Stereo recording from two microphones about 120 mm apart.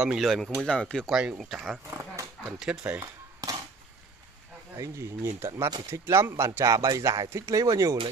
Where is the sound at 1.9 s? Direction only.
25° right (ahead or behind).